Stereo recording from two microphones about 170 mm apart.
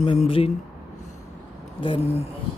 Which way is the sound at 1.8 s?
35° left (ahead or behind).